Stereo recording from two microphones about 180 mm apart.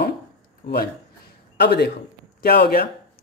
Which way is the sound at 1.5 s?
65° left (ahead or behind).